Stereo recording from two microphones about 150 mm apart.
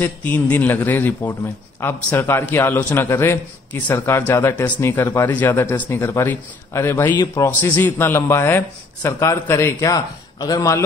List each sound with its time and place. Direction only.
0.0 s a man's voice: 10° left (ahead or behind)
7.6 s a man's voice: 10° left (ahead or behind)